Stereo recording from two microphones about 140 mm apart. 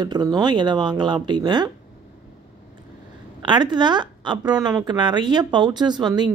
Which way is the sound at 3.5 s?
30° right (ahead or behind).